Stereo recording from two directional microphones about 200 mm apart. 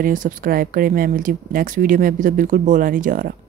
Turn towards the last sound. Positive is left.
turn(degrees=-40)  # may be behind; listen again after turning